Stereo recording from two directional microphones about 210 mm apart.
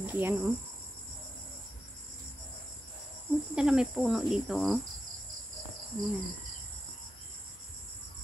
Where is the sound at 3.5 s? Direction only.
5° right (ahead or behind).